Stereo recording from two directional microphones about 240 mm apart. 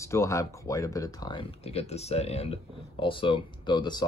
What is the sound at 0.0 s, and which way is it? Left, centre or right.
Speech, centre.